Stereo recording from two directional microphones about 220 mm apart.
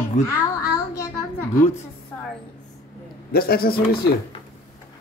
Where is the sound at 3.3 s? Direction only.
45° left (ahead or behind).